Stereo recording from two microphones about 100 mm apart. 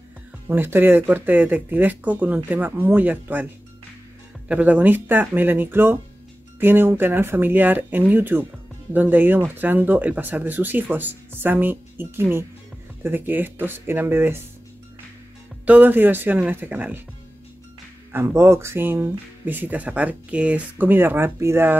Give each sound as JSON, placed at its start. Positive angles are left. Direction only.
{"t": 0.5, "sound": "speech", "side_deg": -25}
{"t": 4.5, "sound": "speech", "side_deg": -15}
{"t": 15.6, "sound": "speech", "side_deg": -15}
{"t": 18.1, "sound": "speech", "side_deg": -25}